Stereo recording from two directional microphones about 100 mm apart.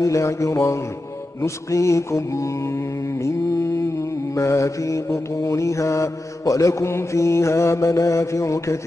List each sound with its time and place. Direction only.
0.0 s mantra: 30° left (ahead or behind)